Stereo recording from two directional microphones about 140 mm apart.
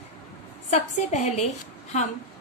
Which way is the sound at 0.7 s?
55° left (ahead or behind).